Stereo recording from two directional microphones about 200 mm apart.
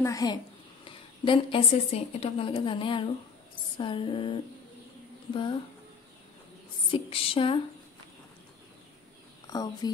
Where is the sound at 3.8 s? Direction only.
25° left (ahead or behind).